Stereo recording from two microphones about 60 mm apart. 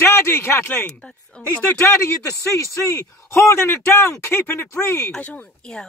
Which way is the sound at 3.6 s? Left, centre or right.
Left.